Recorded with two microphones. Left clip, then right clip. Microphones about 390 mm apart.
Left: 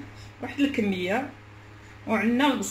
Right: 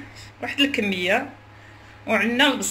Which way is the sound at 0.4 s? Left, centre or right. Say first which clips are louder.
Right 5 dB; right.